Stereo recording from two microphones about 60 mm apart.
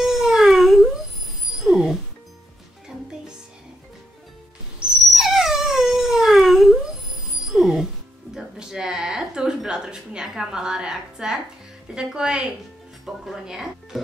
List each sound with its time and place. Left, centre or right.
0.0 s a sound: centre
1.6 s music: centre
4.8 s dog: centre
7.5 s music: centre
8.4 s a sound: centre
11.9 s speech: centre